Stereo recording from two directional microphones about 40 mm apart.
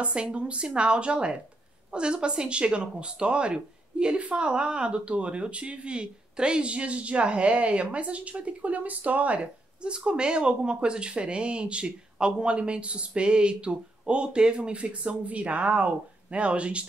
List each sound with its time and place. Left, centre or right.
0.0 s speech: right
9.8 s speech: right